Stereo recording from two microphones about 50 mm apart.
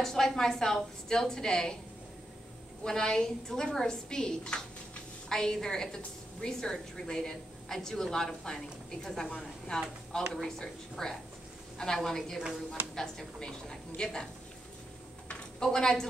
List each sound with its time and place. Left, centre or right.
0.0 s a woman's voice: centre
2.8 s a woman's voice: centre
15.6 s a woman's voice: centre